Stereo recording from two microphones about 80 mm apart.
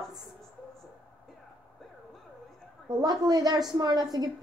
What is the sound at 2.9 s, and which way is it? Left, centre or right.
A woman's voice, right.